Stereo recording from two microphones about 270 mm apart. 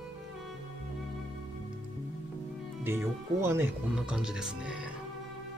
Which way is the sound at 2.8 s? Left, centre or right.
Centre.